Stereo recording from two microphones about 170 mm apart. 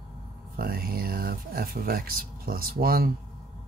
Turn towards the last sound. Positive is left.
turn(degrees=-60)  # may be behind; listen again after turning